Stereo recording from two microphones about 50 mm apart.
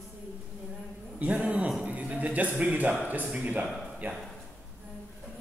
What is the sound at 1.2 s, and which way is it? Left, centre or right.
A man's voice, right.